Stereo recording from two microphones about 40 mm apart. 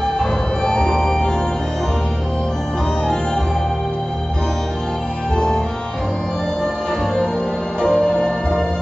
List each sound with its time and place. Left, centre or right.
0.0 s music: centre
5.3 s music: centre
7.8 s music: centre